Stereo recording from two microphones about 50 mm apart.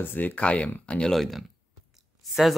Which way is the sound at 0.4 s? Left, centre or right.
Left.